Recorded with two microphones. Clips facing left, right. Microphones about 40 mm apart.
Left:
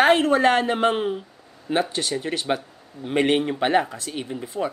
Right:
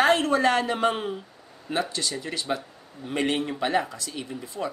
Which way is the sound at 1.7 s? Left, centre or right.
Left.